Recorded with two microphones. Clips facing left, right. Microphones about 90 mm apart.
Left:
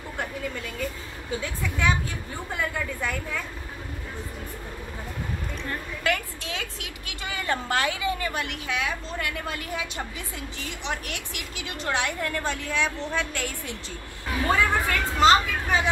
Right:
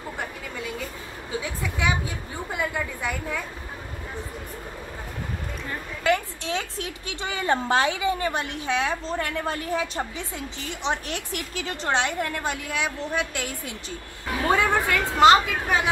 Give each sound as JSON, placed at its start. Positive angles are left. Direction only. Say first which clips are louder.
{"t": 1.4, "sound": "a woman's voice", "louder": "left 1 dB", "side_deg": -10}
{"t": 6.0, "sound": "a woman's voice", "louder": "right 5 dB", "side_deg": -25}